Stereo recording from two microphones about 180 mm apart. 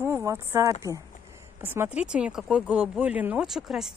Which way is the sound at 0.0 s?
15° right (ahead or behind).